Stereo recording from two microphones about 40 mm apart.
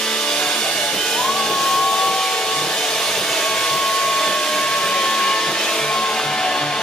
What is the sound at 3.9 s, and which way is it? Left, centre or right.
Hair dryer, centre.